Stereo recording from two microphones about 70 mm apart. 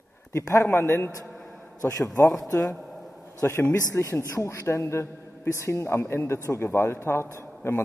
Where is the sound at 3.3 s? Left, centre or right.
Left.